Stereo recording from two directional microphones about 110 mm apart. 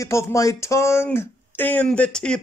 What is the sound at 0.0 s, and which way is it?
Speech, 25° left (ahead or behind).